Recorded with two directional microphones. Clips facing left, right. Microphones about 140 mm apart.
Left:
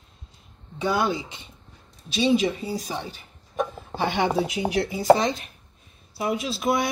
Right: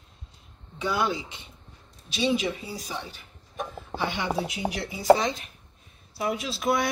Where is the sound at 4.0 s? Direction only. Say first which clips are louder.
Left 6 dB; 65° left (ahead or behind).